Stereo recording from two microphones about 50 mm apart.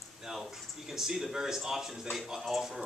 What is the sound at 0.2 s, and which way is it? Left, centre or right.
Speech, centre.